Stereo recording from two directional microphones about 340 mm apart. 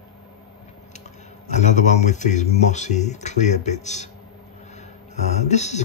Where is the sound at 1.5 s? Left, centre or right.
Left.